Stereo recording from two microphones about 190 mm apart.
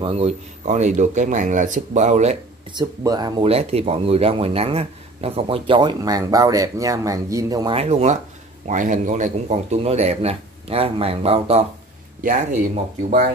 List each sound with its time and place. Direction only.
0.0 s a man's voice: 30° right (ahead or behind)
2.7 s speech: 20° right (ahead or behind)
7.7 s a man's voice: 35° right (ahead or behind)
12.2 s speech: 45° right (ahead or behind)